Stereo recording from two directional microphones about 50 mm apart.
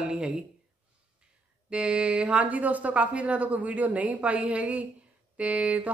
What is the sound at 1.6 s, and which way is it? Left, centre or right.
Speech, centre.